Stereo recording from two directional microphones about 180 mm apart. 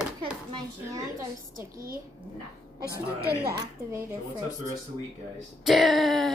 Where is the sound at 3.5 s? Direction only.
20° right (ahead or behind).